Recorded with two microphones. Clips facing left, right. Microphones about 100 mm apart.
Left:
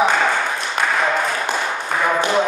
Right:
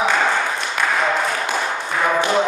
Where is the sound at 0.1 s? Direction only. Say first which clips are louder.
Even; centre (ahead or behind).